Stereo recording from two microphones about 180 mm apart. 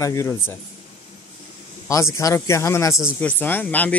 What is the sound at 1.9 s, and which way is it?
A man's voice, 15° left (ahead or behind).